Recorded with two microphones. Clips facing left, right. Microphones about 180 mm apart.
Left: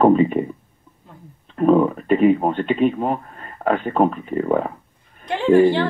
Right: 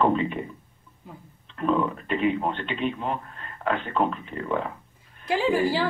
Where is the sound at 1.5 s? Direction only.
45° left (ahead or behind).